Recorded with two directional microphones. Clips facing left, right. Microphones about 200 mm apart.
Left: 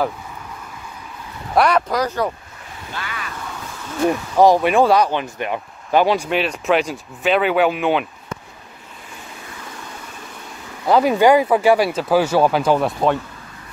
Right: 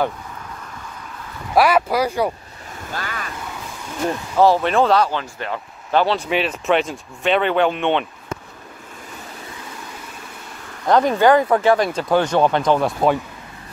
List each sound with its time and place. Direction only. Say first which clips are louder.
1.5 s speech: right 1 dB; 5° right (ahead or behind)
2.9 s vehicle: right 2 dB; 45° right (ahead or behind)
4.1 s speech: left 2 dB; 15° left (ahead or behind)
6.2 s speech: even; centre (ahead or behind)
10.9 s speech: left 1 dB; 10° left (ahead or behind)